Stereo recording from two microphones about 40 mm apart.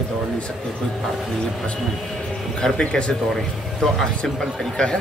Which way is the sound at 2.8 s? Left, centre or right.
Left.